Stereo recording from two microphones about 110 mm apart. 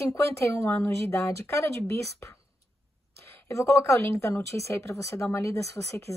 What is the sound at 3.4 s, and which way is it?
Speech, 25° left (ahead or behind).